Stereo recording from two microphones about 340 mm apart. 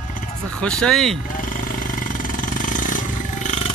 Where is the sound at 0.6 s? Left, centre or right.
Centre.